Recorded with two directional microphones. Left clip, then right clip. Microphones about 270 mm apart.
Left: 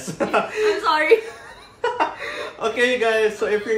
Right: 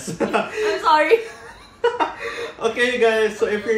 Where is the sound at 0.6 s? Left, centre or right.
Centre.